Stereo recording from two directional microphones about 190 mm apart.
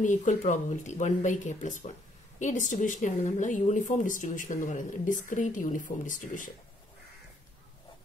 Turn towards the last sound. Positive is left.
turn(degrees=45)  # may be behind; listen again after turning